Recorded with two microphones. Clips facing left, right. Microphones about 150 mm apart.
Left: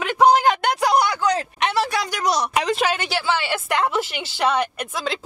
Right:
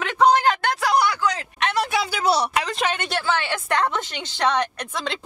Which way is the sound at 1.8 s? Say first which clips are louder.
Even; centre (ahead or behind).